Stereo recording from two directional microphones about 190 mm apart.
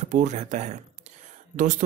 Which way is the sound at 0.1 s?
40° right (ahead or behind).